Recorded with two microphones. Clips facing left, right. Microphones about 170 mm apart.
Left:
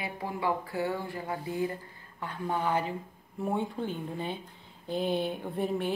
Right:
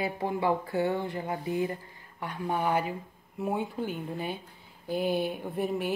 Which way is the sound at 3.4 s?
5° right (ahead or behind).